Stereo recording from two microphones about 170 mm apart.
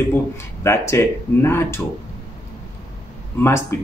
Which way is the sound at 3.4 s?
15° left (ahead or behind).